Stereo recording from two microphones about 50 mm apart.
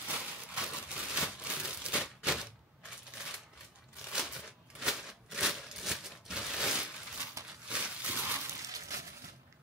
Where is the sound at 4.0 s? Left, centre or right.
Centre.